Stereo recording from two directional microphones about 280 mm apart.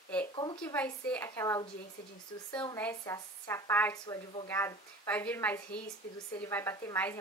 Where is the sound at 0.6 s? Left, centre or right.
Centre.